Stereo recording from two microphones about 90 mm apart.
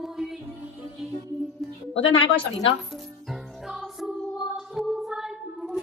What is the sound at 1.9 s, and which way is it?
Speech, 80° left.